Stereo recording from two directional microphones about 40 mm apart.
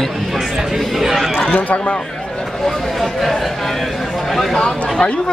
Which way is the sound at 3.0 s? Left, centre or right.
Centre.